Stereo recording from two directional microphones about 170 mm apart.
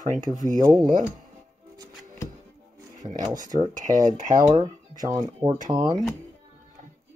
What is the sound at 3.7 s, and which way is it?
Speech, 50° right (ahead or behind).